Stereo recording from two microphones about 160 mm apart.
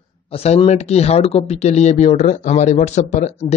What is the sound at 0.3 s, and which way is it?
Speech, 35° left (ahead or behind).